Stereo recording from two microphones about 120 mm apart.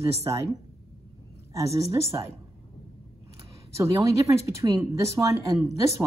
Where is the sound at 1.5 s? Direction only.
25° right (ahead or behind).